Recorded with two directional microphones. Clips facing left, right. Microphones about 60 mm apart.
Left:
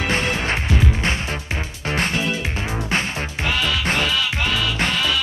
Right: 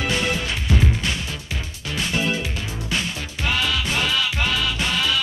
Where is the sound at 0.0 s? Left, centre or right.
Left.